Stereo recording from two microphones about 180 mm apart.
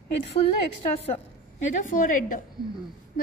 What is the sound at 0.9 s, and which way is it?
A woman's voice, 35° left (ahead or behind).